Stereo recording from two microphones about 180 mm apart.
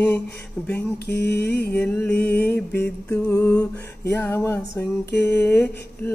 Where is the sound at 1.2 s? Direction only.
65° left (ahead or behind).